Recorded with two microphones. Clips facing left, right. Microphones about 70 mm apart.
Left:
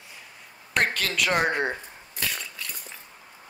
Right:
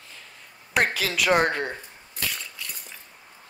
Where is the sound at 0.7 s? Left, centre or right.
Centre.